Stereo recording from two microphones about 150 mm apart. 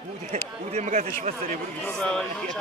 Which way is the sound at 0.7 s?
50° right (ahead or behind).